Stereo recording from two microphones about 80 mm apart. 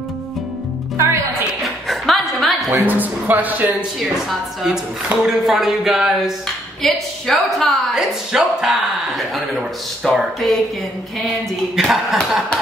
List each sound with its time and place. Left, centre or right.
0.9 s music: right
1.6 s a sound: centre
2.7 s speech: right
4.0 s a woman's voice: centre
5.5 s a woman's voice: centre